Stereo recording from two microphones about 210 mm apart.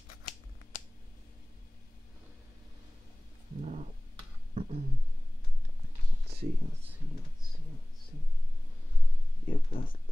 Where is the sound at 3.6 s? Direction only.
35° right (ahead or behind).